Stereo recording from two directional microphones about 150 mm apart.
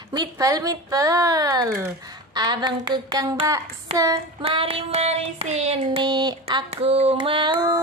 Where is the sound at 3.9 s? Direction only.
45° right (ahead or behind).